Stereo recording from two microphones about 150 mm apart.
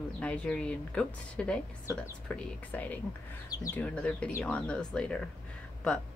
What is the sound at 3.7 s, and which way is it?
A woman's voice, 10° left (ahead or behind).